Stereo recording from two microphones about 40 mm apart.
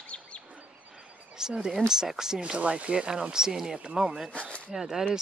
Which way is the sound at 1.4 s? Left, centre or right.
Centre.